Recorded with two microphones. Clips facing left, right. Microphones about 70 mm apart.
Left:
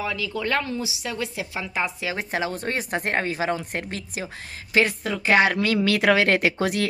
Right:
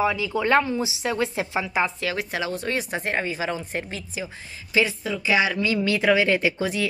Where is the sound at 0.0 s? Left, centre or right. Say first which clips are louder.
Right 5 dB; centre.